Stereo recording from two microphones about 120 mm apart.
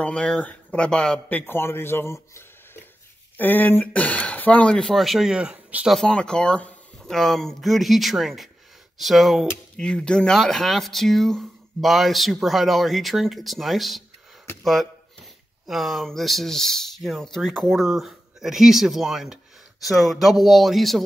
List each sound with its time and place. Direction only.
0.0 s speech: 10° left (ahead or behind)
1.5 s speech: 20° left (ahead or behind); by 5.9 s 10° right (ahead or behind)
5.9 s speech: 5° left (ahead or behind)